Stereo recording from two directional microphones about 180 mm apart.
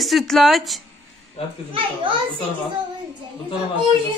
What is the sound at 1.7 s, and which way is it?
Speech, 30° right (ahead or behind).